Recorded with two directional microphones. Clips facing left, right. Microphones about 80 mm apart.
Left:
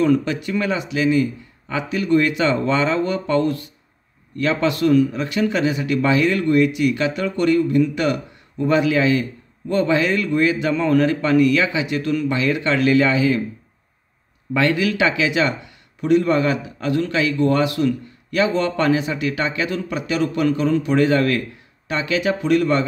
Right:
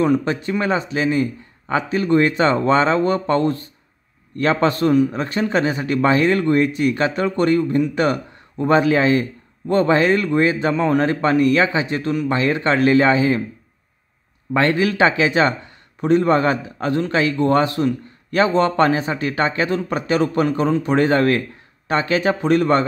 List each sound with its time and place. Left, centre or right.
0.0 s a man's voice: right
14.5 s a man's voice: right
20.4 s a man's voice: right